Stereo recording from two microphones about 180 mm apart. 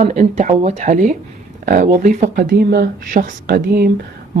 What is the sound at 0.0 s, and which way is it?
Speech, 40° right (ahead or behind).